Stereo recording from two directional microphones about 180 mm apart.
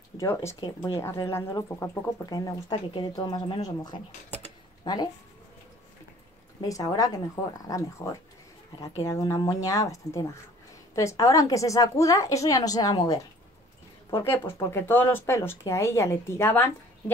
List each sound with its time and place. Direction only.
0.2 s speech: 15° left (ahead or behind)
6.6 s speech: 20° left (ahead or behind)
14.2 s speech: 10° left (ahead or behind)